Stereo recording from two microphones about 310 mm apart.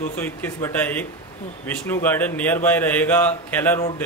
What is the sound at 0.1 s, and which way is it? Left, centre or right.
A man's voice, centre.